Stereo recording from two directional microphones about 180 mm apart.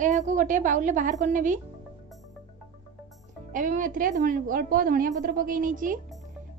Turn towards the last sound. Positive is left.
turn(degrees=-50)  # may be behind; listen again after turning